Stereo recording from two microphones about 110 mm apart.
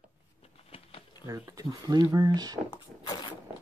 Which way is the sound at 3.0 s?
45° left (ahead or behind).